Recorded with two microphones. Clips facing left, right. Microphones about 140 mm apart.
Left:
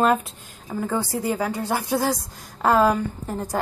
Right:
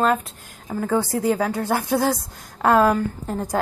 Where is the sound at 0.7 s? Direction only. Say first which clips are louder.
Right 3 dB; centre (ahead or behind).